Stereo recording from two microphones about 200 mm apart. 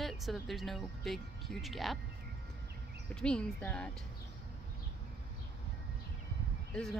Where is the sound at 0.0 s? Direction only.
Centre (ahead or behind).